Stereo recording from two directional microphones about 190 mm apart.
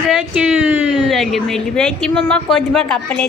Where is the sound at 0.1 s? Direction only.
5° right (ahead or behind).